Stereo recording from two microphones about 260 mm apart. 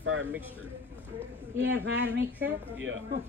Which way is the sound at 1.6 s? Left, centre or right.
Right.